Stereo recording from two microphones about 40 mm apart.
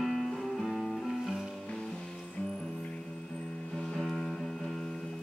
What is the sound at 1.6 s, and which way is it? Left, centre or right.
Music, centre.